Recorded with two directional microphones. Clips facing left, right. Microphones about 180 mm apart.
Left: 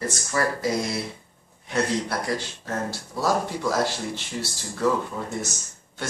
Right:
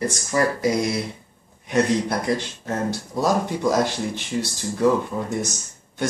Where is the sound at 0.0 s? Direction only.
15° right (ahead or behind).